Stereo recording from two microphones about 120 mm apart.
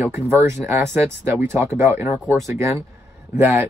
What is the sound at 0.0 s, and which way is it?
Speech, 20° right (ahead or behind).